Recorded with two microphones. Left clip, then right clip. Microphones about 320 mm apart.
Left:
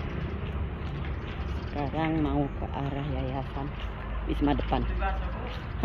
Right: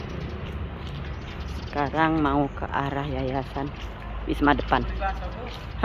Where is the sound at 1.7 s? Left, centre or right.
Right.